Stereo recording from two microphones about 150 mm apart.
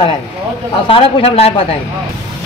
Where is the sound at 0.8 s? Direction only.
40° left (ahead or behind).